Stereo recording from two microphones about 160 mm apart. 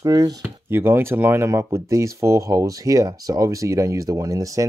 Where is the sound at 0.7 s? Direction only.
15° right (ahead or behind).